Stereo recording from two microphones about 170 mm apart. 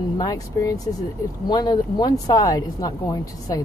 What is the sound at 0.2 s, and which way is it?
Speech, 20° left (ahead or behind).